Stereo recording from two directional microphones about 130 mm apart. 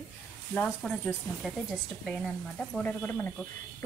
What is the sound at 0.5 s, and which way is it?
A woman's voice, 10° left (ahead or behind).